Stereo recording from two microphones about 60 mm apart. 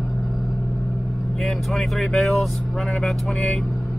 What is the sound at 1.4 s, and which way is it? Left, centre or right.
Vehicle, centre.